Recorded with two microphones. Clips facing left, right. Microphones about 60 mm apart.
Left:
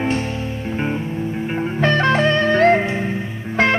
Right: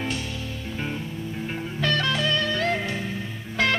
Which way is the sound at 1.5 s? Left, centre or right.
Left.